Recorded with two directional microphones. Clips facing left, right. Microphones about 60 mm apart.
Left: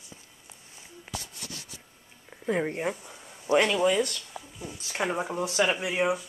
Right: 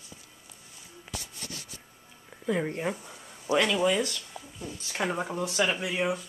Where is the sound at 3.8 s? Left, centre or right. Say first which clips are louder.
Left 2 dB; centre.